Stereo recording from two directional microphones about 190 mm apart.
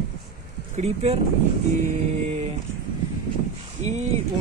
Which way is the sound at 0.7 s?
35° right (ahead or behind).